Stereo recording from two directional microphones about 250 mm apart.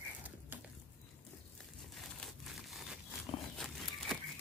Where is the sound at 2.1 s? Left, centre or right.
Centre.